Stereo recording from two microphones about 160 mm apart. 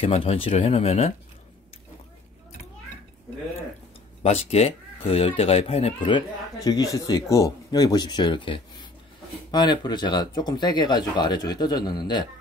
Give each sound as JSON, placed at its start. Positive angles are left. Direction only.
{"t": 0.0, "sound": "speech", "side_deg": 35}
{"t": 4.2, "sound": "speech", "side_deg": 40}